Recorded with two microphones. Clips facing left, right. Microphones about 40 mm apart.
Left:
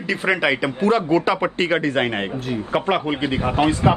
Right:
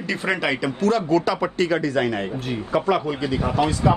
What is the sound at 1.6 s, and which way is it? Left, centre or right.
Speech, left.